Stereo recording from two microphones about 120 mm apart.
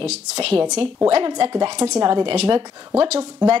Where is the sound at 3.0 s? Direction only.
60° right (ahead or behind).